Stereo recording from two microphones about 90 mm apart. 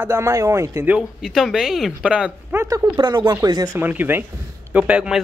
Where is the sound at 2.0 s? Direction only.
15° right (ahead or behind).